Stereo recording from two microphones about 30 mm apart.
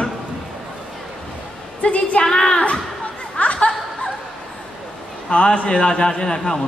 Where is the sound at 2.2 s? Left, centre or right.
Left.